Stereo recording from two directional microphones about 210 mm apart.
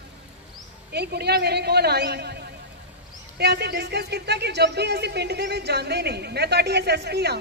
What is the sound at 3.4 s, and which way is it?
Speech, 50° right (ahead or behind).